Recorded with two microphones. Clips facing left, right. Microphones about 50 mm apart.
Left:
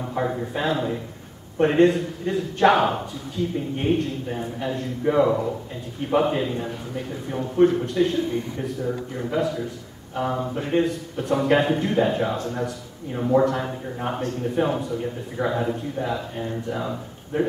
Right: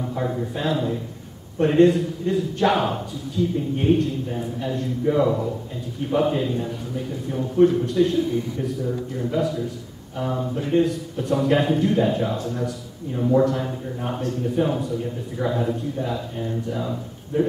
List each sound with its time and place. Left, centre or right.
0.0 s a man's voice: left